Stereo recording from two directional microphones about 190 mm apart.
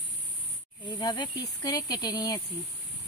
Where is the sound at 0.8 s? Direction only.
20° left (ahead or behind).